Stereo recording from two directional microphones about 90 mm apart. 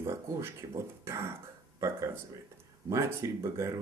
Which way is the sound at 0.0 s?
30° right (ahead or behind).